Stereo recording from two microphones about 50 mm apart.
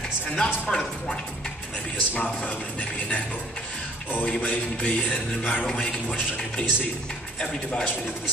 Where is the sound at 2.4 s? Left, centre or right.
Left.